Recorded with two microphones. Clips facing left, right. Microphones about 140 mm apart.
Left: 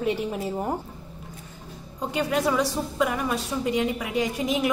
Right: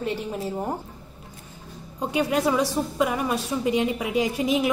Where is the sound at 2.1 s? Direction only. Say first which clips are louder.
Right 2 dB; 5° right (ahead or behind).